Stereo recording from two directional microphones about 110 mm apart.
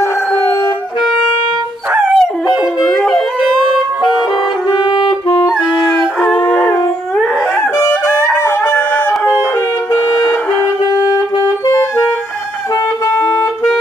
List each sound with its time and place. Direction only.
2.1 s howl: centre (ahead or behind)
6.3 s howl: 10° left (ahead or behind)
8.3 s music: 15° left (ahead or behind)
11.4 s clarinet: 30° left (ahead or behind)